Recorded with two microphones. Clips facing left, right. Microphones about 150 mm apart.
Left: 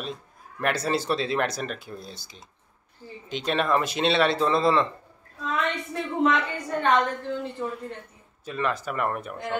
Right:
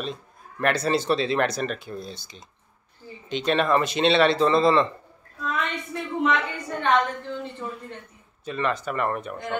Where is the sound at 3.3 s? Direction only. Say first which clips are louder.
Right 3 dB; 5° left (ahead or behind).